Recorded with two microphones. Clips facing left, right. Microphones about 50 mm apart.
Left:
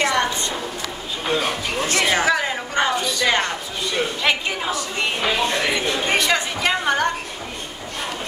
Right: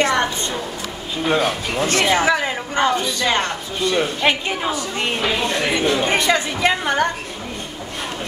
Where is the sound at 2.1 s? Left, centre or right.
Right.